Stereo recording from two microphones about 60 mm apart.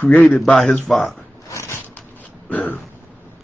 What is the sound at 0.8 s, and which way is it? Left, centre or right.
Speech, centre.